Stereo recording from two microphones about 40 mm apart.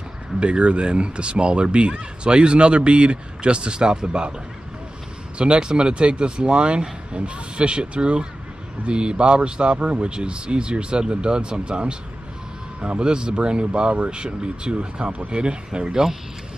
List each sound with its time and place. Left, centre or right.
0.4 s speech: right
5.4 s speech: right